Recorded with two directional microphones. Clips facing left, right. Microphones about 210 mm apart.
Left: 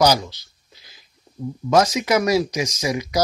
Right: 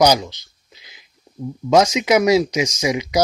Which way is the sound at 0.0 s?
20° right (ahead or behind).